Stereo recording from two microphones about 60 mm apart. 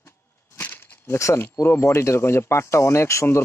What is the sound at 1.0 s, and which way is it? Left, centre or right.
Speech, left.